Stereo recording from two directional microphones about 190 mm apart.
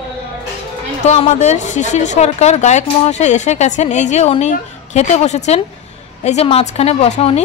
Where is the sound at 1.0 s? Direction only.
35° left (ahead or behind).